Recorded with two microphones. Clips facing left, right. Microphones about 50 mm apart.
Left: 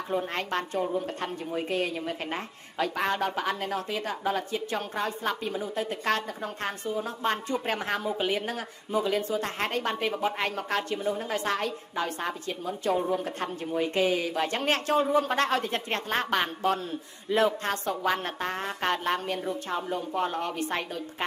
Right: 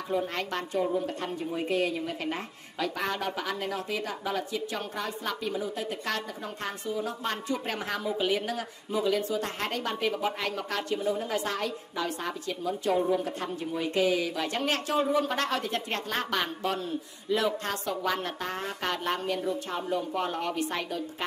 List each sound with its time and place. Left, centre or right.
0.1 s a woman's voice: left